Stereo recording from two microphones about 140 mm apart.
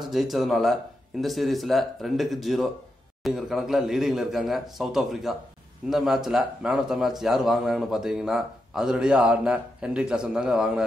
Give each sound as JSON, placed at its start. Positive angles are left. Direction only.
{"t": 0.0, "sound": "a man's voice", "side_deg": 0}